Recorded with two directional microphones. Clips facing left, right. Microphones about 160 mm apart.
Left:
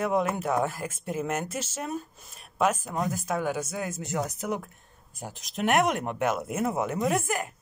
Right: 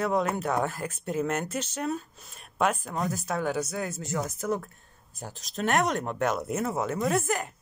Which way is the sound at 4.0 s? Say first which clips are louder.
Left 1 dB; 15° left (ahead or behind).